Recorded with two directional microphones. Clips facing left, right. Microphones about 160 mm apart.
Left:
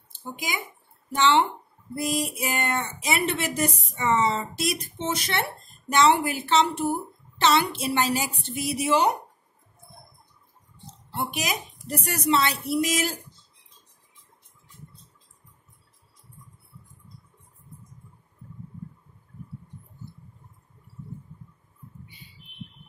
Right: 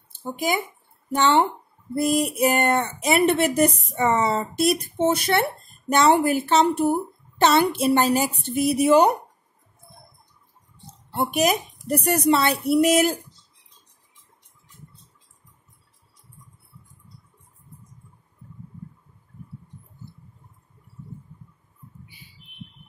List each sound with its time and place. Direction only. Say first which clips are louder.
0.2 s a woman's voice: right 8 dB; 55° right (ahead or behind)
11.1 s speech: right 8 dB; 55° right (ahead or behind)